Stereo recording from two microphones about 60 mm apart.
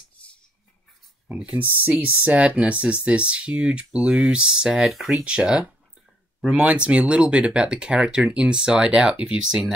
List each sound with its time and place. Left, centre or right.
1.3 s speech: centre
1.6 s speech: right; by 4.8 s centre
4.8 s speech: centre
5.2 s speech: centre